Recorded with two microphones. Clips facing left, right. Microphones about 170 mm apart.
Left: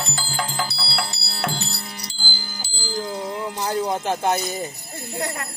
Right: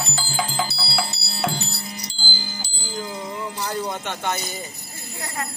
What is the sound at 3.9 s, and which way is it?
Speech, 35° left (ahead or behind).